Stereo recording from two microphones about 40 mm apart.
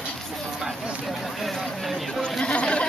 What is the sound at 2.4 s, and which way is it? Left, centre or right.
Speech, left.